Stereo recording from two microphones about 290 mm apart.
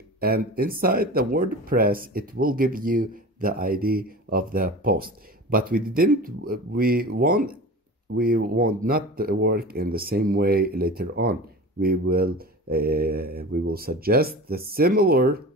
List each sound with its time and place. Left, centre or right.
0.2 s speech: right